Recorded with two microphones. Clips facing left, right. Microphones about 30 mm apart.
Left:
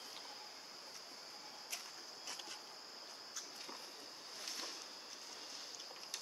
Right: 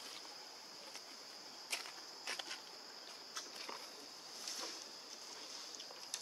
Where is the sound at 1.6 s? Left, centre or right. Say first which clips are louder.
Right 6 dB; right.